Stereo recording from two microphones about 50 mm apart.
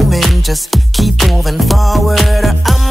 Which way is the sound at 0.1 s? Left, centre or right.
Centre.